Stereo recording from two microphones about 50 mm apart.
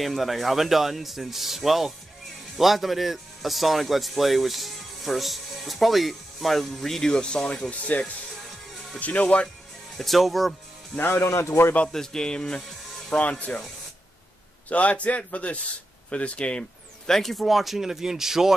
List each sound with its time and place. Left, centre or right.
0.0 s speech: centre; by 9.5 s left
9.9 s speech: centre
11.0 s speech: left
11.2 s speech: left
11.9 s speech: centre
14.7 s speech: left; by 18.5 s centre